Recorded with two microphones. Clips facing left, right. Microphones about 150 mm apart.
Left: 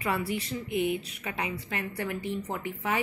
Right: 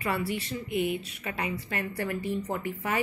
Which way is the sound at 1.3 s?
10° left (ahead or behind).